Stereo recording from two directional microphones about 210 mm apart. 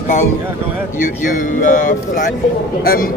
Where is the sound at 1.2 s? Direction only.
40° left (ahead or behind).